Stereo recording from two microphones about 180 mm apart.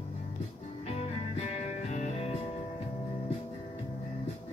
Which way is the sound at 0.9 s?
40° left (ahead or behind).